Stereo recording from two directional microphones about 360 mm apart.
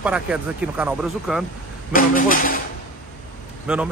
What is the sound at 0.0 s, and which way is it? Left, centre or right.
Speech, centre.